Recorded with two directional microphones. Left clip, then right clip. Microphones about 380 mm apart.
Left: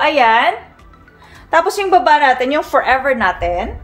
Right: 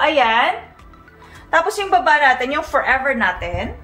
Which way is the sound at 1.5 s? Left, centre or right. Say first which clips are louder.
Left 4 dB; left.